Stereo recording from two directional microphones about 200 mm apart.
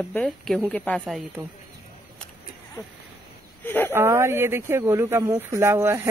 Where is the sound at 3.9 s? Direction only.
15° right (ahead or behind).